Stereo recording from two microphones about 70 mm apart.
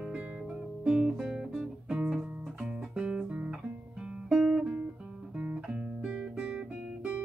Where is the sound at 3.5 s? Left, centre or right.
Centre.